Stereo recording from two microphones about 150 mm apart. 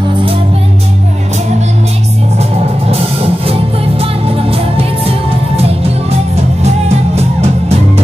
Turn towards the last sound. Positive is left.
turn(degrees=-40)  # may be behind; listen again after turning